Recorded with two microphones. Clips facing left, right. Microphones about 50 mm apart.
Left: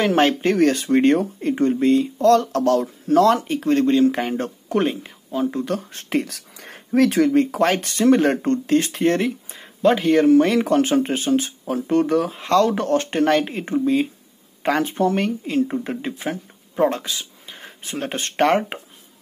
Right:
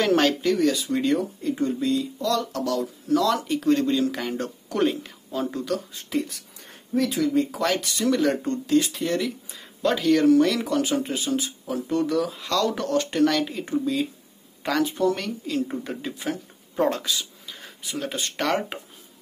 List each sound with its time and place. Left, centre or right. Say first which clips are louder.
0.1 s speech: left 3 dB; left
5.9 s speech: left 4 dB; left
6.3 s a sound: left 5 dB; left
7.2 s speech: left 5 dB; left